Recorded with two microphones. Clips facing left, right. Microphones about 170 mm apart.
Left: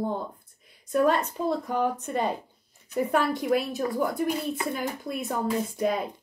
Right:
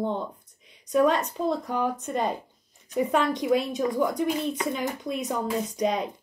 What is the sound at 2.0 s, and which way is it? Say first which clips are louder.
Speech: even; 10° right (ahead or behind).